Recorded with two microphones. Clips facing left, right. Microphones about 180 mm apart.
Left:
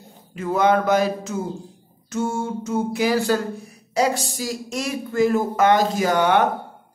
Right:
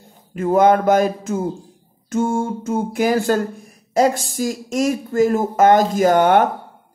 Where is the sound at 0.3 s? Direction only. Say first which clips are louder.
Right 5 dB; 50° right (ahead or behind).